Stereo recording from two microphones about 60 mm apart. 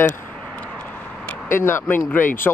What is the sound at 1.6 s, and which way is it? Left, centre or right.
Speech, left.